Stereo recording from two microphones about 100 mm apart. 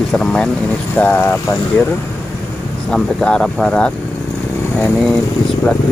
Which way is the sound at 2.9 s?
10° left (ahead or behind).